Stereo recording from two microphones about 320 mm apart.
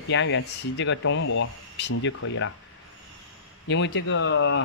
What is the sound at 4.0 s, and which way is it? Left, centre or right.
Speech, left.